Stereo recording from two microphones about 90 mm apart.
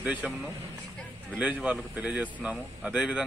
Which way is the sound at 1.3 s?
15° right (ahead or behind).